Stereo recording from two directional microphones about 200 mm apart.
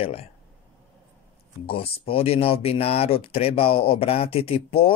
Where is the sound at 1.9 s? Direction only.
30° left (ahead or behind).